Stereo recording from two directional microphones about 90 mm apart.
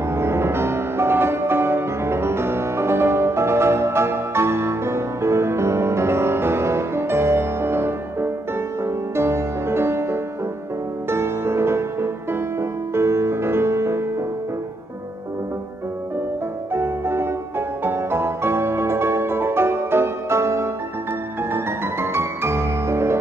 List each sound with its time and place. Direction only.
0.1 s music: 30° right (ahead or behind)
16.7 s music: 30° right (ahead or behind)